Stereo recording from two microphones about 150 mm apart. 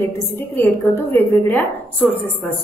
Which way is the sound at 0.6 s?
15° left (ahead or behind).